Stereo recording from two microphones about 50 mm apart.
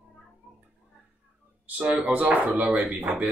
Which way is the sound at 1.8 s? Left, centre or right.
Right.